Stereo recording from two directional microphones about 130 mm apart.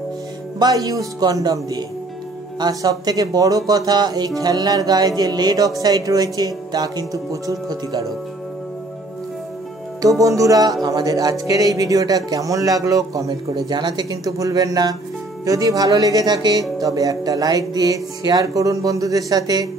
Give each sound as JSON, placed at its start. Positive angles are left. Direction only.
{"t": 0.6, "sound": "speech", "side_deg": -30}
{"t": 10.0, "sound": "speech", "side_deg": -25}